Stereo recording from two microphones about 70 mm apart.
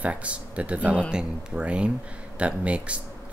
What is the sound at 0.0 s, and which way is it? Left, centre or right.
Speech, centre.